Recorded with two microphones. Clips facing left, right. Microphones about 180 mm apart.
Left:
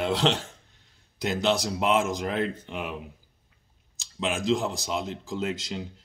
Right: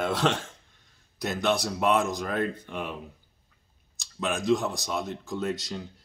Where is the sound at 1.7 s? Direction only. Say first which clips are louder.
Even; 15° left (ahead or behind).